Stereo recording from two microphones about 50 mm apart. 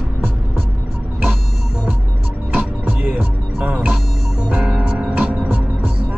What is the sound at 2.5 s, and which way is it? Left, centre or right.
Music, right.